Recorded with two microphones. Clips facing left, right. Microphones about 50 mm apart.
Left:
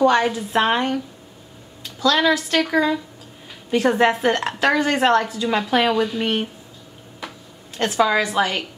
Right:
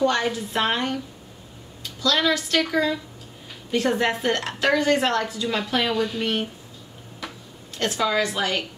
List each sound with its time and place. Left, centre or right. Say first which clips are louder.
0.0 s a woman's voice: left 5 dB; centre
2.0 s a woman's voice: left 4 dB; centre
7.2 s a sound: left 1 dB; centre
7.7 s a woman's voice: left 4 dB; centre